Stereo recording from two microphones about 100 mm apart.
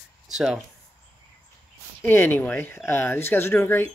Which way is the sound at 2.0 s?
25° left (ahead or behind).